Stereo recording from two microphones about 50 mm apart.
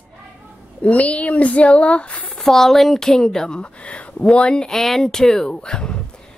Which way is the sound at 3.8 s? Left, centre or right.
Left.